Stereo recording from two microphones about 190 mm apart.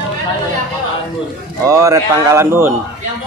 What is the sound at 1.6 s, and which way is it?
A man's voice, 15° right (ahead or behind).